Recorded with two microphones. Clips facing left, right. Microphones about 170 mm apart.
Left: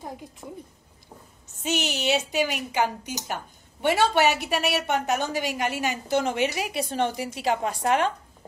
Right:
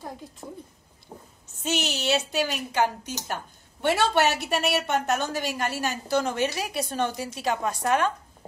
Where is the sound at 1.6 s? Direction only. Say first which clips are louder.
Left 1 dB; 15° left (ahead or behind).